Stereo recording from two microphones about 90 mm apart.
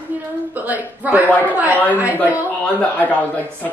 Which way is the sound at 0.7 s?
20° right (ahead or behind).